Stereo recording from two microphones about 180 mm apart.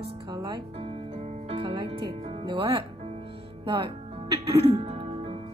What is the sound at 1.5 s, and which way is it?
Music, 25° right (ahead or behind).